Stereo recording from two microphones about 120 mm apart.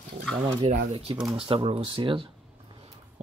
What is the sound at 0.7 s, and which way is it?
Speech, 55° right (ahead or behind).